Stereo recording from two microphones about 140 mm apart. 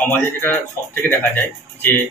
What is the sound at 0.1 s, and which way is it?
A man's voice, 15° left (ahead or behind).